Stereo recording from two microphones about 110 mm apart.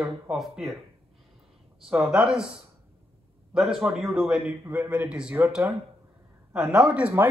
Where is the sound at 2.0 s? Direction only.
5° right (ahead or behind).